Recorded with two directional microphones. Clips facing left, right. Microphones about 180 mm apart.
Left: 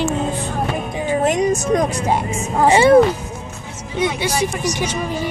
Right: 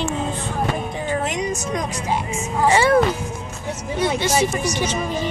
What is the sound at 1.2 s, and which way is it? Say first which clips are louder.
A woman's voice: left 7 dB; 50° left (ahead or behind).